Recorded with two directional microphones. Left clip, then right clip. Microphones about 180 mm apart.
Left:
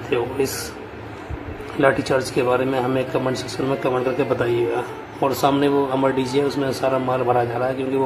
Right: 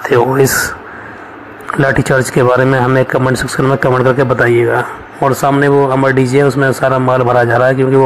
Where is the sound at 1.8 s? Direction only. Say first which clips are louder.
Right 6 dB; 35° right (ahead or behind).